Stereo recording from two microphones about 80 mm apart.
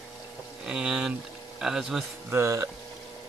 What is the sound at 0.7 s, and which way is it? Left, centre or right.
Speech, centre.